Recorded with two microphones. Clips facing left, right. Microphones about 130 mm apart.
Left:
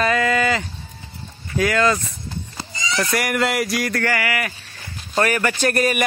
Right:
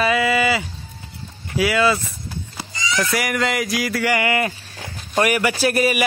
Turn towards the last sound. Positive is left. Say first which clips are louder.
# right 1 dB
turn(degrees=-5)  # may be behind; listen again after turning